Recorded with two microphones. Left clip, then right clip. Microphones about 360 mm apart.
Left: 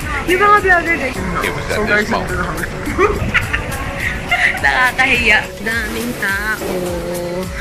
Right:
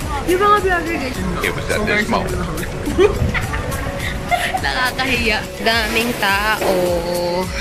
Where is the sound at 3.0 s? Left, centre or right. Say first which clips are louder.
Even; centre.